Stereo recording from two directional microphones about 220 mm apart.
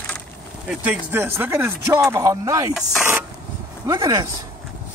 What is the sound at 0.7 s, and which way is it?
Speech, 10° right (ahead or behind).